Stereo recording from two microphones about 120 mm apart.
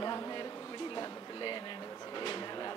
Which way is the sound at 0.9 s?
40° left (ahead or behind).